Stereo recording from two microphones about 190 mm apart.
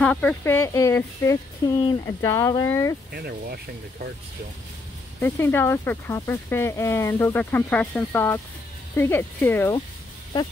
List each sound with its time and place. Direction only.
0.0 s speech: 5° left (ahead or behind)
3.3 s speech: 55° right (ahead or behind)
5.2 s speech: 10° left (ahead or behind)